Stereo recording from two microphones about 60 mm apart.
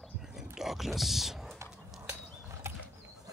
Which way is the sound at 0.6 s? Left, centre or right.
Centre.